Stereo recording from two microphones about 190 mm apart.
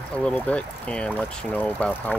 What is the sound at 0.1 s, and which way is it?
Speech, 5° left (ahead or behind).